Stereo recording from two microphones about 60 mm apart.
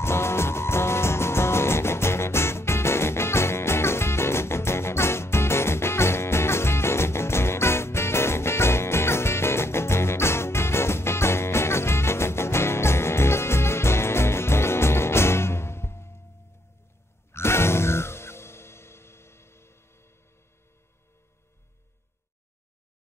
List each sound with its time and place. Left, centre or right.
0.0 s music: left
17.3 s music: left